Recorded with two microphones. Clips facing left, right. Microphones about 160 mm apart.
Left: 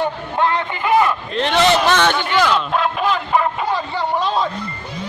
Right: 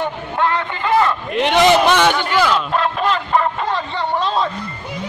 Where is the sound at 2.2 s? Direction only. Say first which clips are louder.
Even; centre (ahead or behind).